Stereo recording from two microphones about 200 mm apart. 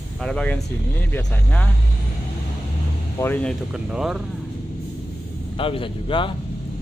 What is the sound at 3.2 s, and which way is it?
Speech, 10° left (ahead or behind).